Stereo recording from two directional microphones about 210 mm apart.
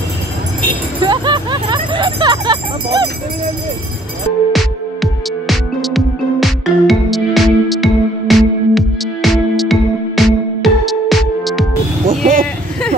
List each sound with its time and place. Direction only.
1.0 s music: 20° right (ahead or behind)
4.5 s music: centre (ahead or behind)